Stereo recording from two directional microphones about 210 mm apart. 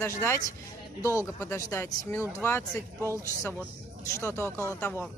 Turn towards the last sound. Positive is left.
turn(degrees=5)  # may be behind; listen again after turning